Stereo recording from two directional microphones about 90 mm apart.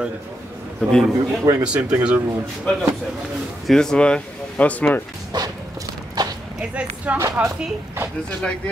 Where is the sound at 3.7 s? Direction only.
5° left (ahead or behind).